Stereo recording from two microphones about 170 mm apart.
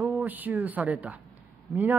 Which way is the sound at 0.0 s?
5° right (ahead or behind).